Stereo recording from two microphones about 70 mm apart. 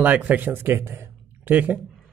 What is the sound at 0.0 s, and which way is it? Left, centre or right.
Speech, right.